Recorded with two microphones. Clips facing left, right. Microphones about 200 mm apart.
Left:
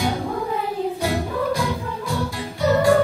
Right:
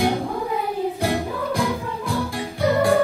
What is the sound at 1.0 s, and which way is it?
Music, 55° right (ahead or behind).